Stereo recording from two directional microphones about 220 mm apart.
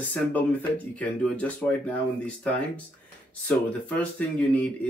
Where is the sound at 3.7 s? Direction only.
5° left (ahead or behind).